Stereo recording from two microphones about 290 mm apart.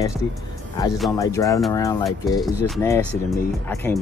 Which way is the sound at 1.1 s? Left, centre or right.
Centre.